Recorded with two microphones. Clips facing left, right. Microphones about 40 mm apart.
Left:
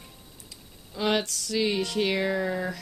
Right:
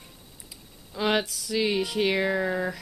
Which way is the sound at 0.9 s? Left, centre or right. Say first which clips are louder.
Right 1 dB; centre.